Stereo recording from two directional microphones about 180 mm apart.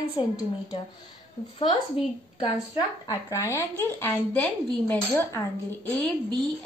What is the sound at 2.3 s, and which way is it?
A woman's voice, 20° left (ahead or behind).